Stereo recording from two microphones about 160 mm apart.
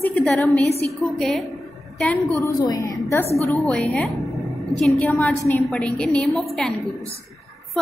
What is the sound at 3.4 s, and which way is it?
A woman's voice, 10° left (ahead or behind).